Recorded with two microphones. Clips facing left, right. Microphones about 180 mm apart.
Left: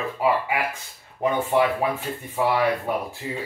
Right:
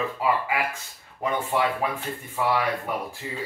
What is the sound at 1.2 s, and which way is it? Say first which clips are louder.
Speech: left 4 dB; 20° left (ahead or behind).